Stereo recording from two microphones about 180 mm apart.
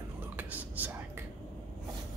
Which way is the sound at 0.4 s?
10° right (ahead or behind).